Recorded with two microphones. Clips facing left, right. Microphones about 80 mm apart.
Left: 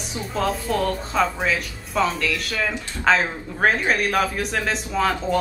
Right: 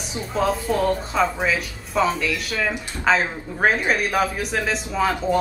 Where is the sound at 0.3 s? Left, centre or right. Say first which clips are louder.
Right 2 dB; centre.